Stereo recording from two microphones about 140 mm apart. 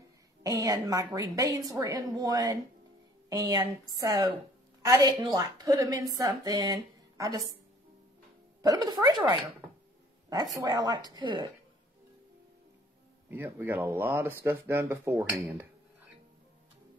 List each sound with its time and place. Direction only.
0.4 s a woman's voice: 25° right (ahead or behind)
8.6 s a woman's voice: 30° right (ahead or behind)
13.3 s speech: 15° right (ahead or behind)